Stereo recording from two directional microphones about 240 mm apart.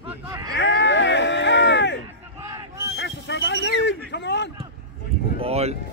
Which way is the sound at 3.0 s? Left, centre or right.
Left.